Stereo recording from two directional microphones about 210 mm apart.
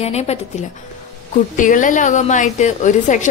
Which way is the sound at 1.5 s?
40° left (ahead or behind).